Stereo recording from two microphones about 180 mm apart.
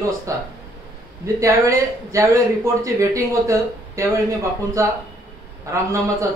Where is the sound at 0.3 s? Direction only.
15° right (ahead or behind).